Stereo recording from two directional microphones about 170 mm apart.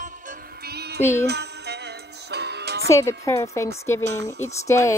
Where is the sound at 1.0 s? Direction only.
15° left (ahead or behind).